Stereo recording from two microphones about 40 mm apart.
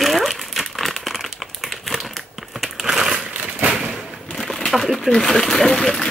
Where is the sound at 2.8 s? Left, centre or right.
Centre.